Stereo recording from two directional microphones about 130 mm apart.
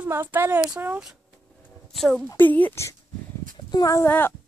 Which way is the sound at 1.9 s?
5° left (ahead or behind).